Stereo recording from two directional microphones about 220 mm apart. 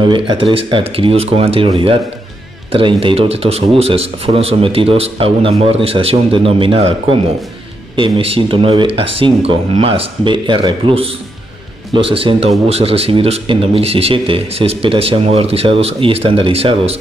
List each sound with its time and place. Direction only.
0.0 s speech: 20° right (ahead or behind)